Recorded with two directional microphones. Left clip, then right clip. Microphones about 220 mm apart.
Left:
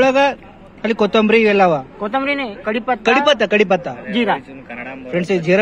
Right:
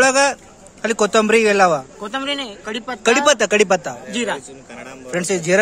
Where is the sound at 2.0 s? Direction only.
20° left (ahead or behind).